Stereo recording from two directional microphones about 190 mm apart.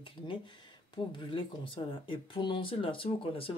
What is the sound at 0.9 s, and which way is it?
Speech, 25° left (ahead or behind).